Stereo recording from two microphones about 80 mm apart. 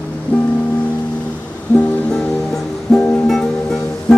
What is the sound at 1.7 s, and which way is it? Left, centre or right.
Music, centre.